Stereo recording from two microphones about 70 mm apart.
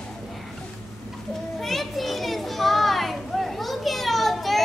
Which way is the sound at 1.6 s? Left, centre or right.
Centre.